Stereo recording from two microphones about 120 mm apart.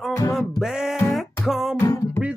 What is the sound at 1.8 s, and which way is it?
Music, 20° left (ahead or behind).